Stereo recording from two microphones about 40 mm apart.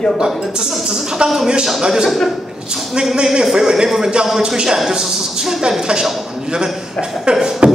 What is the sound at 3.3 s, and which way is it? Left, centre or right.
A man's voice, centre.